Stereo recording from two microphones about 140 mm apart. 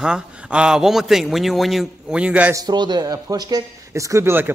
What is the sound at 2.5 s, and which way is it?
A man's voice, 30° right (ahead or behind).